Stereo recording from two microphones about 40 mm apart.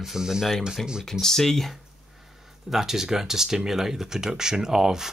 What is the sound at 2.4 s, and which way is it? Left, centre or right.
Speech, centre.